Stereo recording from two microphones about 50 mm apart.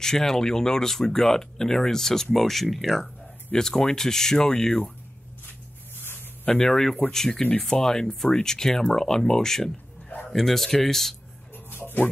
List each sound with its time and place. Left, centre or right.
0.0 s speech: centre
6.6 s speech: centre
11.5 s music: left